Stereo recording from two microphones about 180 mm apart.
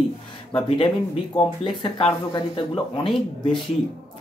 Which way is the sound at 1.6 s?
30° left (ahead or behind).